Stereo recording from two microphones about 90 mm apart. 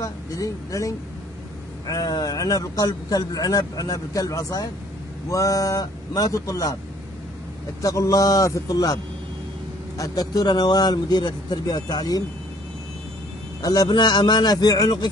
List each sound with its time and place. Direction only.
0.0 s a man's voice: 40° left (ahead or behind)
7.8 s a man's voice: 40° left (ahead or behind)
13.6 s a man's voice: 45° left (ahead or behind)